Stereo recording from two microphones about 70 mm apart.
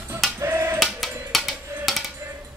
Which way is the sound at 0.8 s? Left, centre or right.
Centre.